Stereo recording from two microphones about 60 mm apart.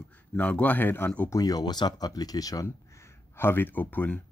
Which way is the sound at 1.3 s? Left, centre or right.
Left.